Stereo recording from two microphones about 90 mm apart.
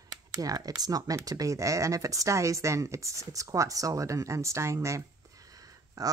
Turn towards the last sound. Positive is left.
turn(degrees=-40)  # may be behind; listen again after turning